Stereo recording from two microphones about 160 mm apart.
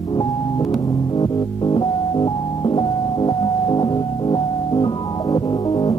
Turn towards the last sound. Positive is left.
turn(degrees=25)  # may be behind; listen again after turning